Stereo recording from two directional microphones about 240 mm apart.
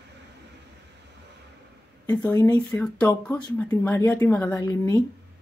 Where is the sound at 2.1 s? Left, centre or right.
Centre.